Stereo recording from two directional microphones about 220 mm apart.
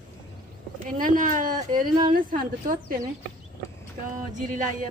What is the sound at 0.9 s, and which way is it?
Speech, 40° right (ahead or behind).